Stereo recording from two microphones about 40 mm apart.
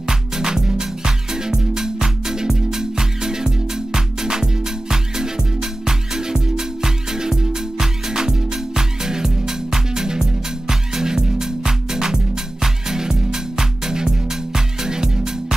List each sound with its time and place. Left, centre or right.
0.0 s music: centre